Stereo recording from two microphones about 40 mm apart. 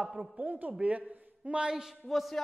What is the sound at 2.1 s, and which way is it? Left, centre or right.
Speech, centre.